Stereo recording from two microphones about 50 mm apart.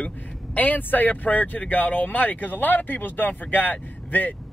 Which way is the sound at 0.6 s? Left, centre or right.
Left.